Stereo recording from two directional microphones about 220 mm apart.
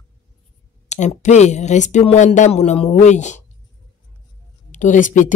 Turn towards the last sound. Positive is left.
turn(degrees=35)  # may be behind; listen again after turning